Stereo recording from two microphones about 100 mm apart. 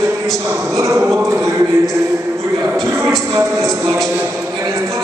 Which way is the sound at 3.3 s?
30° right (ahead or behind).